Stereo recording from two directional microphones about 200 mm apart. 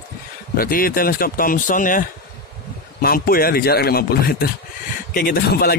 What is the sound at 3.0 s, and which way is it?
A man's voice, 45° left (ahead or behind).